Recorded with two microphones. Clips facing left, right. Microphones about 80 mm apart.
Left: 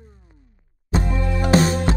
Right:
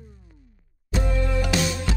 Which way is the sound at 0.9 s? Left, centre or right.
Left.